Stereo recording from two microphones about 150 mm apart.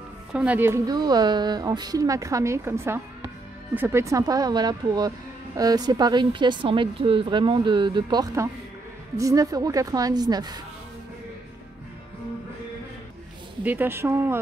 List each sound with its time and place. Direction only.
0.3 s a woman's voice: 10° right (ahead or behind); by 10.6 s 25° right (ahead or behind)
13.7 s speech: 15° right (ahead or behind)